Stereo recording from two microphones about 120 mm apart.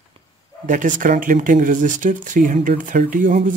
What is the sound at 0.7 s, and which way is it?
Speech, 90° right.